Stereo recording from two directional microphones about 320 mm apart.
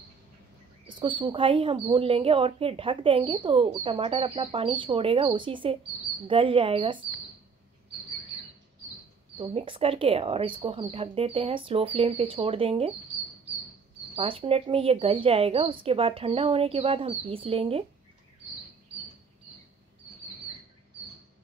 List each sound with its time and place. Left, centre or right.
0.9 s speech: centre
9.4 s speech: centre
14.1 s speech: centre